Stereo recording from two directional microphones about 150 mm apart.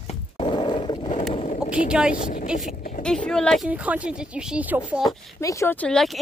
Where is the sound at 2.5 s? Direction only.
60° left (ahead or behind).